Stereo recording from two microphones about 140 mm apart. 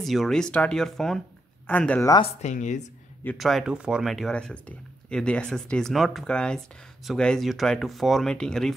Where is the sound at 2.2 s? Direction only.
60° left (ahead or behind).